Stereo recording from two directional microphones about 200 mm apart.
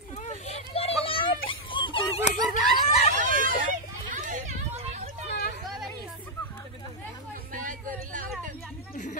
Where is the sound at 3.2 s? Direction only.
40° right (ahead or behind).